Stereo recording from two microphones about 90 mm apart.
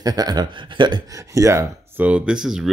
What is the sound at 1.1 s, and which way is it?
Speech, 35° right (ahead or behind).